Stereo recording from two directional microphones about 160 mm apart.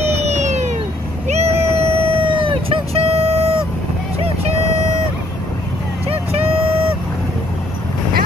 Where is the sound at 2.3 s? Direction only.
35° right (ahead or behind).